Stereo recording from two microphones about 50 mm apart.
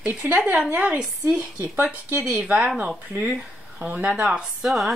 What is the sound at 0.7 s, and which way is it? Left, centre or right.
Speech, right.